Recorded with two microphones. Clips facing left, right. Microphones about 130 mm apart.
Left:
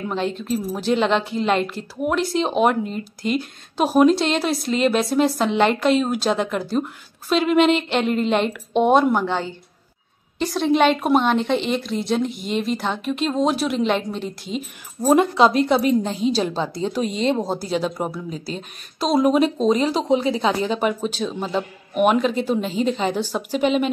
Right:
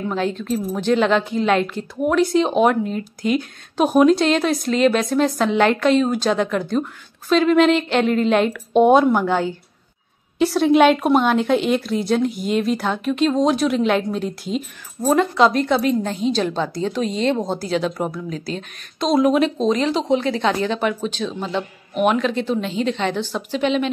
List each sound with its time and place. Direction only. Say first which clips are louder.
0.1 s a woman's voice: even; centre (ahead or behind)
15.0 s a woman's voice: left 1 dB; 15° left (ahead or behind)